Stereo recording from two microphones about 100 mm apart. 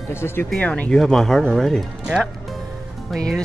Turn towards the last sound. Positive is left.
turn(degrees=5)  # may be behind; listen again after turning